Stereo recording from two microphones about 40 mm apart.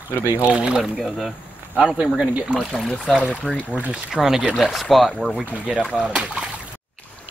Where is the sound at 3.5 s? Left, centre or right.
Left.